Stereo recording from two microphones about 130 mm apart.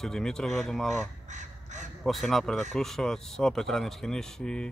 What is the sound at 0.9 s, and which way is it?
Speech, 65° right (ahead or behind).